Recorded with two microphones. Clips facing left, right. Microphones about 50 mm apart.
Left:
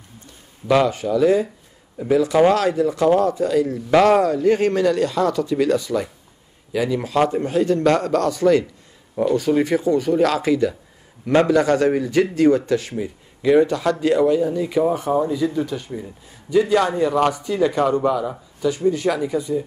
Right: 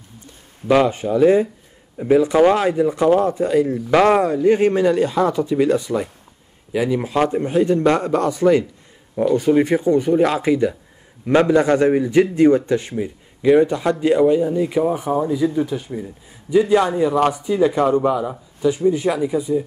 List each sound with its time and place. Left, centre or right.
0.8 s speech: right
16.9 s speech: centre